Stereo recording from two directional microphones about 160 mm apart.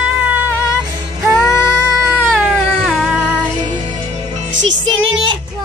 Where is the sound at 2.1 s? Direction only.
Centre (ahead or behind).